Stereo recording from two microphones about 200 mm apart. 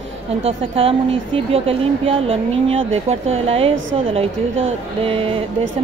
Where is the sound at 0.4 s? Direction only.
30° right (ahead or behind).